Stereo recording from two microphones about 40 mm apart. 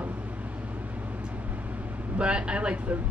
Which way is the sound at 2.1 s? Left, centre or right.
Right.